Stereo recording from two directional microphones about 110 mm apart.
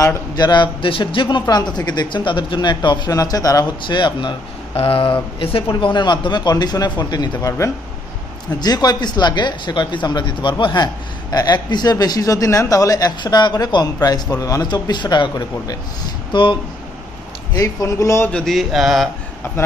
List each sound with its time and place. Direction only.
0.0 s speech: 40° left (ahead or behind)
1.5 s speech: 40° left (ahead or behind)
3.8 s speech: 45° left (ahead or behind)
4.7 s speech: 60° left (ahead or behind); by 7.2 s 40° left (ahead or behind)
7.3 s speech: 25° left (ahead or behind)
8.5 s speech: 40° left (ahead or behind)
17.6 s speech: 30° left (ahead or behind)
18.3 s mantra: centre (ahead or behind)